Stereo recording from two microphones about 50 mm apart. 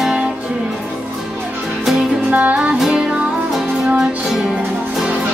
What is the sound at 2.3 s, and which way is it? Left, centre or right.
Music, right.